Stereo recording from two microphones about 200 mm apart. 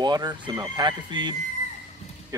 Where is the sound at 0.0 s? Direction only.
20° right (ahead or behind).